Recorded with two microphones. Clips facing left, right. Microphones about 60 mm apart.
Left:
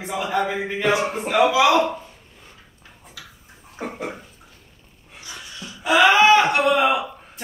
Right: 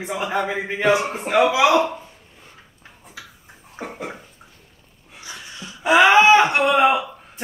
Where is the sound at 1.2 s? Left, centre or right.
Centre.